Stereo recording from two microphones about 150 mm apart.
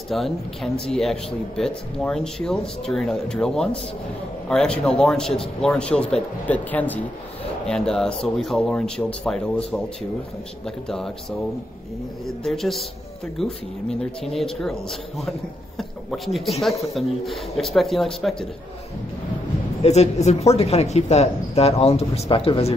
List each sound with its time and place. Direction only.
0.1 s speech: centre (ahead or behind)
10.9 s speech: 5° left (ahead or behind)
12.4 s speech: centre (ahead or behind)
19.8 s speech: 45° left (ahead or behind)